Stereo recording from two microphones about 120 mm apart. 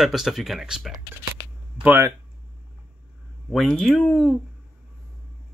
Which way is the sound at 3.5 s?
Centre (ahead or behind).